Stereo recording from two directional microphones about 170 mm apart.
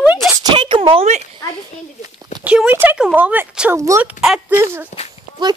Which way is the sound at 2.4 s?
5° right (ahead or behind).